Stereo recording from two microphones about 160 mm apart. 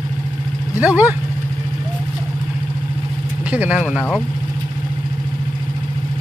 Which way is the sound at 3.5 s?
10° right (ahead or behind).